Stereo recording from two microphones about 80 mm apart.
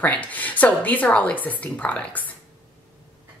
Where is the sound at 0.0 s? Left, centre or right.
Centre.